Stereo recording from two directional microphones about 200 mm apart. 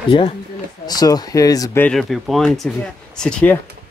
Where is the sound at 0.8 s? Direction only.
20° left (ahead or behind).